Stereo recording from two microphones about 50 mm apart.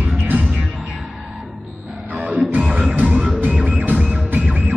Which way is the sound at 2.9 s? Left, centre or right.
Right.